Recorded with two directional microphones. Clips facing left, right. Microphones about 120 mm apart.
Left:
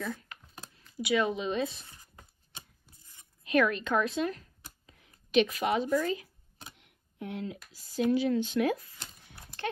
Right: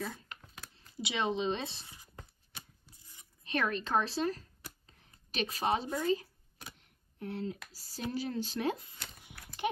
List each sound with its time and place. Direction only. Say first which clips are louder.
0.7 s speech: left 7 dB; 25° right (ahead or behind)
3.4 s speech: left 7 dB; 35° right (ahead or behind)
6.8 s tick: left 3 dB; 35° right (ahead or behind)
7.7 s speech: left 10 dB; 40° right (ahead or behind)
9.3 s horse: even; 25° left (ahead or behind)